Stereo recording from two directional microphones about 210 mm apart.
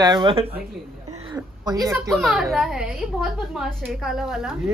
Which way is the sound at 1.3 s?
20° right (ahead or behind).